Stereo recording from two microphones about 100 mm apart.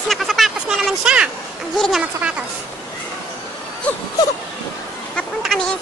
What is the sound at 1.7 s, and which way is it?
Speech, centre (ahead or behind).